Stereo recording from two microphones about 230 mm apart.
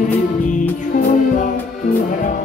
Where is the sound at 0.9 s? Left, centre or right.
Left.